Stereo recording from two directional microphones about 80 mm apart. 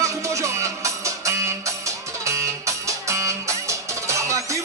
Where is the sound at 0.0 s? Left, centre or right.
Right.